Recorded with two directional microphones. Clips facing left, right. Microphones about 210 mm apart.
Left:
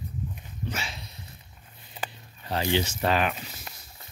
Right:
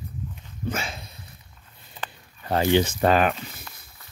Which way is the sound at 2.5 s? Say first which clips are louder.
Right 6 dB; 55° right (ahead or behind).